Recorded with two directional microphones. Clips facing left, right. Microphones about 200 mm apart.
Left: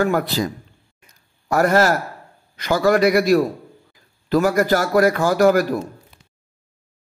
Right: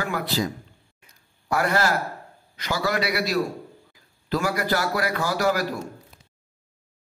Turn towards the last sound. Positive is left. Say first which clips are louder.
# left 8 dB
turn(degrees=50)  # may be behind; listen again after turning